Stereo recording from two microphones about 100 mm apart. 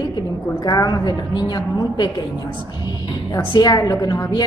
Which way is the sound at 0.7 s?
40° left (ahead or behind).